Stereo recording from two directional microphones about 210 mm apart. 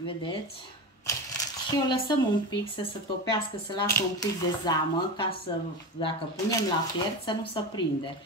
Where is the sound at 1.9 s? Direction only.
20° left (ahead or behind).